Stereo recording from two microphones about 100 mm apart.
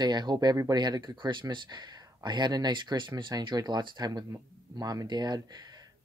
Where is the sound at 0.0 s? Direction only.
45° right (ahead or behind).